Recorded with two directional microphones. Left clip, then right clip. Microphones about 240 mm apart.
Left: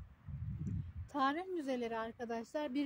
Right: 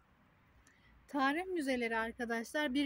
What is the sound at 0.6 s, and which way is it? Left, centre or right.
A woman's voice, right.